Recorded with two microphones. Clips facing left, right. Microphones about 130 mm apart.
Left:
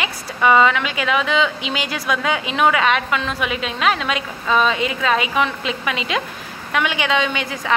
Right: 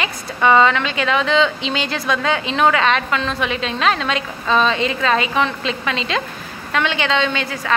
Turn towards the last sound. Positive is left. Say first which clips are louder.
# right 1 dB
turn(degrees=15)  # may be behind; listen again after turning